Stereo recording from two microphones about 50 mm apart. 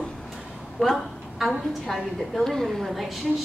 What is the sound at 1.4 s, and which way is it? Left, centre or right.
A woman's voice, centre.